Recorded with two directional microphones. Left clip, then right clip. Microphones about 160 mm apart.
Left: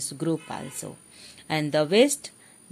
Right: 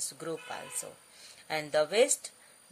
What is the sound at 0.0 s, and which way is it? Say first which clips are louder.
Speech: left 9 dB; 55° left (ahead or behind).